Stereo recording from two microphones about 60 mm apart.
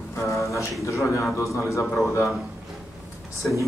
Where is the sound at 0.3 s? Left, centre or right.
Left.